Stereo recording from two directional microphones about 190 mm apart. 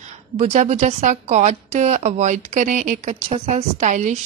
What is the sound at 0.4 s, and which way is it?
A woman's voice, 40° right (ahead or behind).